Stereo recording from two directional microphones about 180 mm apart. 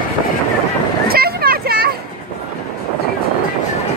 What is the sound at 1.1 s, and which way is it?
Vehicle, 55° right (ahead or behind).